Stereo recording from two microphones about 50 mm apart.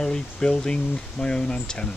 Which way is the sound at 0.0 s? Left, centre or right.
Centre.